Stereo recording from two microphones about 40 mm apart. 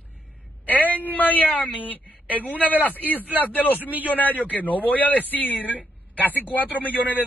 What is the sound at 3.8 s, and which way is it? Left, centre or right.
Speech, right.